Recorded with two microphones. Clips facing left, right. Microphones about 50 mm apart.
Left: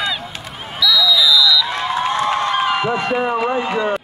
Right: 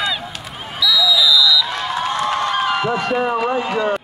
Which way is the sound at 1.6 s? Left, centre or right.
Left.